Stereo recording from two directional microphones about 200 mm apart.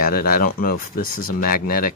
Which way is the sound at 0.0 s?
50° left (ahead or behind).